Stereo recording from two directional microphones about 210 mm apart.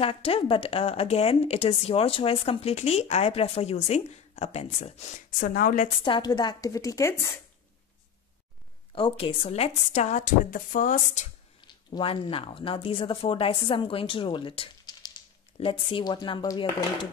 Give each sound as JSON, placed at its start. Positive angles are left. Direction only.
{"t": 0.0, "sound": "speech", "side_deg": 25}
{"t": 6.0, "sound": "a woman's voice", "side_deg": 25}
{"t": 8.9, "sound": "a woman's voice", "side_deg": 25}
{"t": 11.6, "sound": "speech", "side_deg": 25}